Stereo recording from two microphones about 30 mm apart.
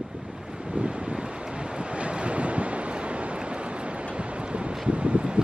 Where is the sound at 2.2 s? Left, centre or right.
Right.